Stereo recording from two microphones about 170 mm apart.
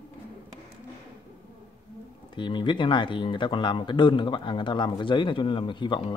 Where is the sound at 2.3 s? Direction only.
30° left (ahead or behind).